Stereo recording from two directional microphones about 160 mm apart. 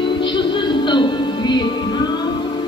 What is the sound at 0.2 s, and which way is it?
Music, 30° left (ahead or behind).